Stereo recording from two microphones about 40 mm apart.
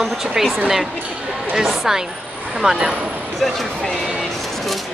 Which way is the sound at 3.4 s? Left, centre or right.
Centre.